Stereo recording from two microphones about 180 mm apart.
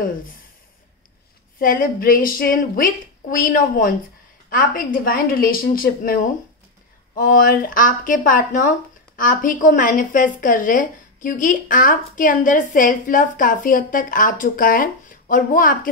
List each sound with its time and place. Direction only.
1.6 s speech: 50° left (ahead or behind)